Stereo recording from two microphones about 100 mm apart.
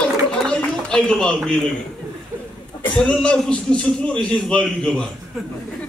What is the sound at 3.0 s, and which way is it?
A man's voice, 10° left (ahead or behind).